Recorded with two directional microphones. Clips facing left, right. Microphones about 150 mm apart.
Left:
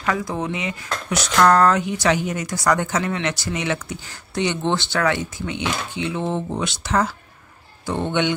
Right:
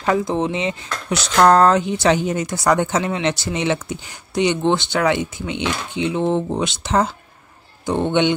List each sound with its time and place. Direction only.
0.0 s speech: 30° right (ahead or behind)